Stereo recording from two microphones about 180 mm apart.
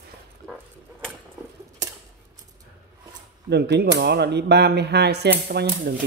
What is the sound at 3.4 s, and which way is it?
Speech, 70° right (ahead or behind).